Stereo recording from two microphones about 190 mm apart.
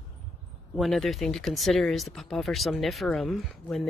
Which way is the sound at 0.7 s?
Centre (ahead or behind).